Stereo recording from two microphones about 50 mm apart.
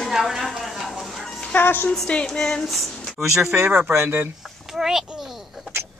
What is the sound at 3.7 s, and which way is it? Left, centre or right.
Speech, right.